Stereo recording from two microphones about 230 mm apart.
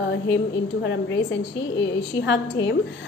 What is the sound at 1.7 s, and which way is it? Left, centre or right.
A woman's voice, left.